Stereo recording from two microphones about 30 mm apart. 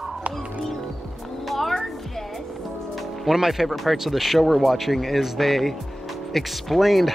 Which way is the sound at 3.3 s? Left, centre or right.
Centre.